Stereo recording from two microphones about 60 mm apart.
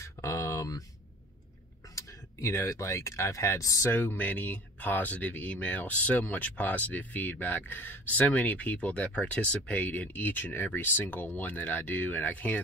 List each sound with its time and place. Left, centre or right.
0.0 s a sound: left
2.0 s speech: left
3.9 s speech: left